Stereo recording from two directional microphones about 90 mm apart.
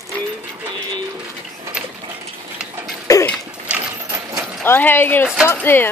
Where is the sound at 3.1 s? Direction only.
40° left (ahead or behind).